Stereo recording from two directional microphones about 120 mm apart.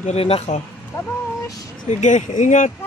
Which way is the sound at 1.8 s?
90° left.